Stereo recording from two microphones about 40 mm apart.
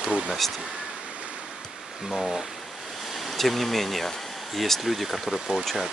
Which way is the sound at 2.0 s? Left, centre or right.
Centre.